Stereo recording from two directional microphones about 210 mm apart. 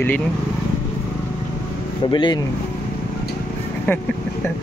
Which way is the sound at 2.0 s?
20° left (ahead or behind).